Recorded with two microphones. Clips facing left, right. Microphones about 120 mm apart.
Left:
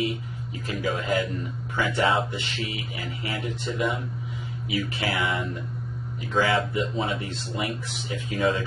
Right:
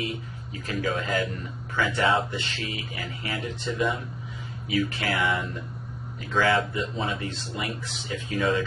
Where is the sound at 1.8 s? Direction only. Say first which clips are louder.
Even; 20° left (ahead or behind).